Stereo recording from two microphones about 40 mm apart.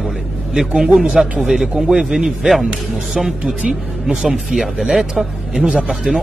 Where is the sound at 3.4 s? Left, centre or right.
Right.